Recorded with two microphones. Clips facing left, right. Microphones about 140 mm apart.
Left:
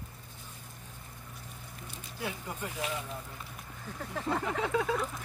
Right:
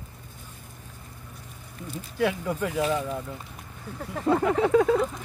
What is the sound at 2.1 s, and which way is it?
Speech, 85° right.